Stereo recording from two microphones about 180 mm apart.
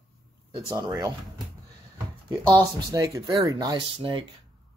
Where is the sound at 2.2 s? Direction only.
20° right (ahead or behind).